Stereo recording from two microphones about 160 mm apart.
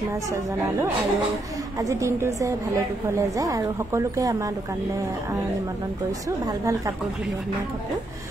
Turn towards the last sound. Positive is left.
turn(degrees=-20)  # may be behind; listen again after turning